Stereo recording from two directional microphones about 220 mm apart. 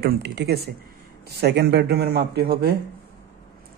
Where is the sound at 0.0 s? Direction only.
45° right (ahead or behind).